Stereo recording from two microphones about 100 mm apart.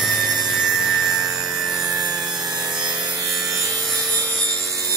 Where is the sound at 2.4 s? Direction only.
40° right (ahead or behind).